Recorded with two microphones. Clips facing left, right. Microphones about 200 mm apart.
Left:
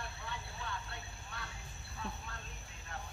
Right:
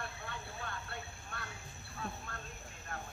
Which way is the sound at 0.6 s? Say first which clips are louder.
Left 2 dB; 50° right (ahead or behind).